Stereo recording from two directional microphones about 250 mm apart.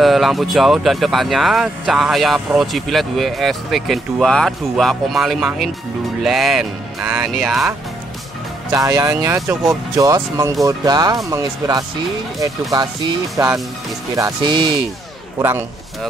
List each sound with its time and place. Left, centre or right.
0.0 s speech: centre
8.7 s speech: centre